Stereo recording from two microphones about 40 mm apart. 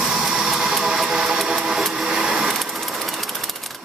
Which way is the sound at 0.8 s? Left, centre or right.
Centre.